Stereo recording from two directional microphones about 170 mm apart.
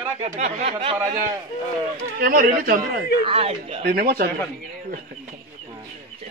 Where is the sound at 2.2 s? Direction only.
55° right (ahead or behind).